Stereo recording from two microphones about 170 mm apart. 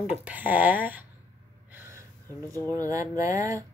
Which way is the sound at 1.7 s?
15° right (ahead or behind).